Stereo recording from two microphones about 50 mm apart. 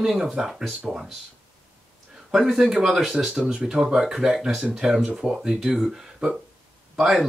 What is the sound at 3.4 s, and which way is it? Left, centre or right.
Speech, right.